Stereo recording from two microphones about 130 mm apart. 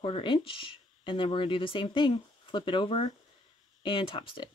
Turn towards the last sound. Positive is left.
turn(degrees=40)  # may be behind; listen again after turning